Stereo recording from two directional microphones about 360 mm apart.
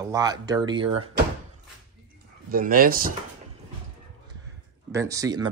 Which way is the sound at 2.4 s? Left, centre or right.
Right.